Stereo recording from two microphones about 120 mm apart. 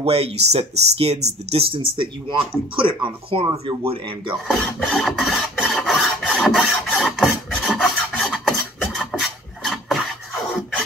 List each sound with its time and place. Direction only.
0.0 s speech: 55° right (ahead or behind)
4.5 s filing: 5° left (ahead or behind)